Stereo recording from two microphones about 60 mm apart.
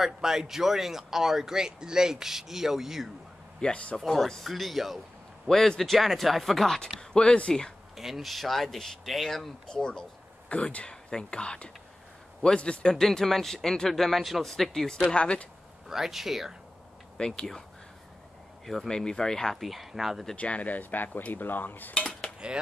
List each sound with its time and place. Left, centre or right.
0.0 s speech: centre
3.6 s speech: centre
4.0 s speech: centre
7.9 s speech: centre
12.9 s speech: centre
15.1 s speech: centre
15.9 s speech: centre
17.4 s speech: centre
18.9 s speech: centre
20.3 s speech: left
22.4 s speech: centre